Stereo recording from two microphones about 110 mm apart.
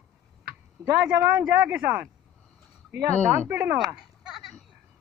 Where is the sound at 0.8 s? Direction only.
30° right (ahead or behind).